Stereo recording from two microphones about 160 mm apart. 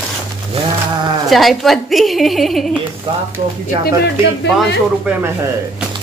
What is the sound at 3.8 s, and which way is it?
Speech, 90° left.